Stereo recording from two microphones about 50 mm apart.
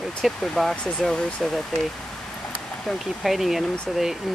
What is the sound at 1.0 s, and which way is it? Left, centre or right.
Speech, centre.